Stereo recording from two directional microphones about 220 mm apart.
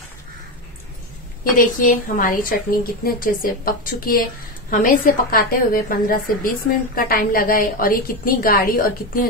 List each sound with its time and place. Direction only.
1.5 s a woman's voice: 35° left (ahead or behind)